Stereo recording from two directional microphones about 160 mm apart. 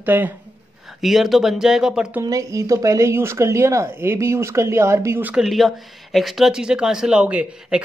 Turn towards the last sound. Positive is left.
turn(degrees=-5)  # may be behind; listen again after turning